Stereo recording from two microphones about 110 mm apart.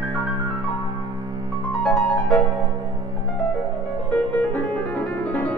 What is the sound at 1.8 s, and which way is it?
Music, 5° left (ahead or behind).